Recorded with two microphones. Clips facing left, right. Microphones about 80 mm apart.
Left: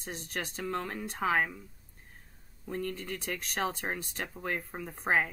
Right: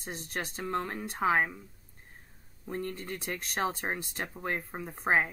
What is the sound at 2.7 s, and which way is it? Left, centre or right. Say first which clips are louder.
Speech: even; centre.